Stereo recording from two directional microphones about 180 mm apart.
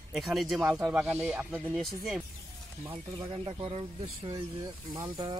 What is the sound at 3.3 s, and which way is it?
Speech, 30° right (ahead or behind).